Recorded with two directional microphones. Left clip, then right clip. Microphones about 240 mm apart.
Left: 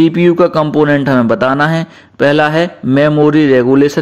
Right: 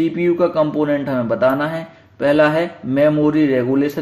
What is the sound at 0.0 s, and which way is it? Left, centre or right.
Speech, left.